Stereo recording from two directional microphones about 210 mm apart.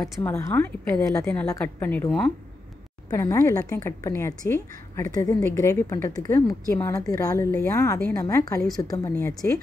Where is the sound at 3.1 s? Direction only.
15° left (ahead or behind).